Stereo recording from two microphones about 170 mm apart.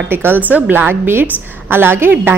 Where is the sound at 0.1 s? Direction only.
10° right (ahead or behind).